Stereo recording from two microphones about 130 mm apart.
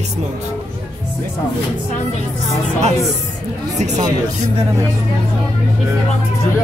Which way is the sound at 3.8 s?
60° right (ahead or behind).